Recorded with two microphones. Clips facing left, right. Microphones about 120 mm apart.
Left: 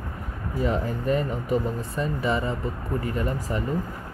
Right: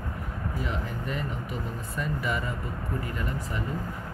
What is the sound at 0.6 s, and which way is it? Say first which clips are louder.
Speech: left 13 dB; 40° left (ahead or behind).